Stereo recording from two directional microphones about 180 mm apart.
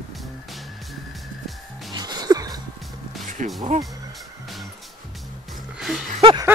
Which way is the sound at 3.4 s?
45° right (ahead or behind).